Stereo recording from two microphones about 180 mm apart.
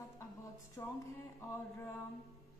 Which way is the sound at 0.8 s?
15° left (ahead or behind).